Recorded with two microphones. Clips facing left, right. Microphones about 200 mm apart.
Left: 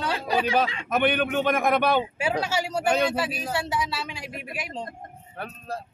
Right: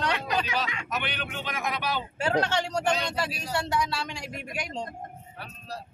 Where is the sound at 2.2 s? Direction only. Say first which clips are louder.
Even; 10° left (ahead or behind).